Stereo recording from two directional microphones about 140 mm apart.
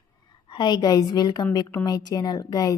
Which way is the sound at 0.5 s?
30° left (ahead or behind).